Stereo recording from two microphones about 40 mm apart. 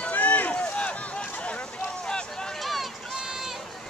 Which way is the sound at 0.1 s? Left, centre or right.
Left.